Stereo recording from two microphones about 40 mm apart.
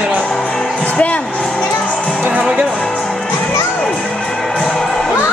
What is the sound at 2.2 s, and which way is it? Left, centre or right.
Music, right.